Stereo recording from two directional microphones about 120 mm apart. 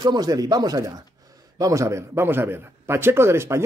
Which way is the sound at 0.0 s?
30° right (ahead or behind).